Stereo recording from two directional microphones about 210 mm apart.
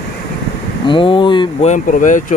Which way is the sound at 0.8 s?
25° left (ahead or behind).